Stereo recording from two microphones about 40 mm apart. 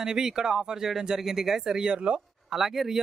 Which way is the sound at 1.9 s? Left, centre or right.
Right.